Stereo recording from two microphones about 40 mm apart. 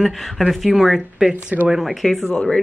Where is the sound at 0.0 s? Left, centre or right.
Centre.